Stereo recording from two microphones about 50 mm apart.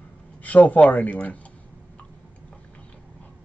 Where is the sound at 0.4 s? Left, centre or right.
Left.